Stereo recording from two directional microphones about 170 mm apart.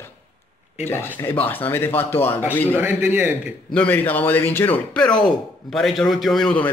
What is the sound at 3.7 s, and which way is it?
A man's voice, 10° left (ahead or behind).